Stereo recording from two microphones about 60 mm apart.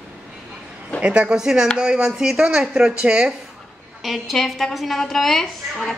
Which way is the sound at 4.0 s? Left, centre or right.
Centre.